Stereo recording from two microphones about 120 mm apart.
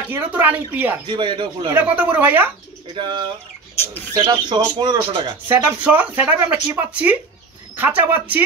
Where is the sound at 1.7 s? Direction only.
10° right (ahead or behind).